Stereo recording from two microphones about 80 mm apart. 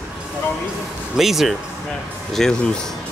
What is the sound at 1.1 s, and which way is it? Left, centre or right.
Speech, centre.